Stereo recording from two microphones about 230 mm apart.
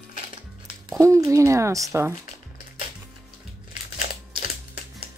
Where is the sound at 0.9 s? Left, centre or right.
Centre.